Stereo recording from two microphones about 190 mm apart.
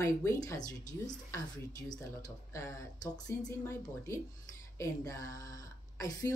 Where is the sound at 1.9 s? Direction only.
15° left (ahead or behind).